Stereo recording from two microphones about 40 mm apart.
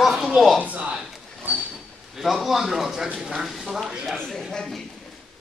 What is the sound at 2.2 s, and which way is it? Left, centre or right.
A man's voice, centre.